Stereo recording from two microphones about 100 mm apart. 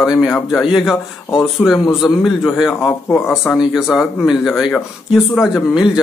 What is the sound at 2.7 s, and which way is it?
Speech, 20° left (ahead or behind).